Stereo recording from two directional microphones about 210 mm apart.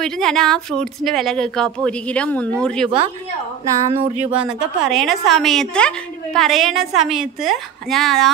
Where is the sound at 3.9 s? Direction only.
30° right (ahead or behind).